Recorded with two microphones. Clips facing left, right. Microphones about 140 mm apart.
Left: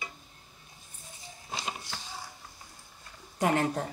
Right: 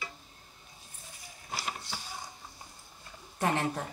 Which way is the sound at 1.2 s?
20° left (ahead or behind).